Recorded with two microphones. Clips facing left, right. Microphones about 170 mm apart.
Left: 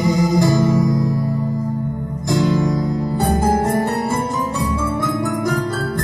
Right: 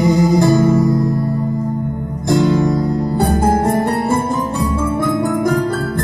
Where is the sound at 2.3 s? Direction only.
55° right (ahead or behind).